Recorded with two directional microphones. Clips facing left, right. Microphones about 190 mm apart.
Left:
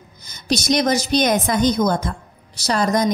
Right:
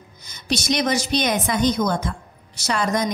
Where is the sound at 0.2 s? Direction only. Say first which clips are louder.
Left 3 dB; 40° left (ahead or behind).